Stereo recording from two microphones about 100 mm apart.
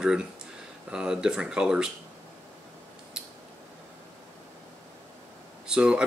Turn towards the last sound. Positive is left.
turn(degrees=-10)  # may be behind; listen again after turning